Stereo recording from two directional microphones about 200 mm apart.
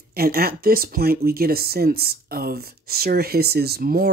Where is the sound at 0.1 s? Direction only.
50° right (ahead or behind).